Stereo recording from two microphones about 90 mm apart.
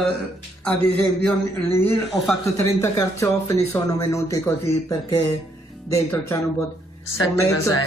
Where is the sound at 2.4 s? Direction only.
35° left (ahead or behind).